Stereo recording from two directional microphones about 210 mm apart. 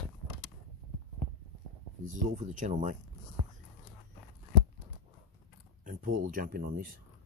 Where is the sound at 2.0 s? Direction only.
35° right (ahead or behind).